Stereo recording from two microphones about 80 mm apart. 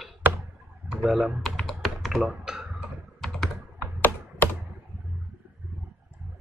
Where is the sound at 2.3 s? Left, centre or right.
Centre.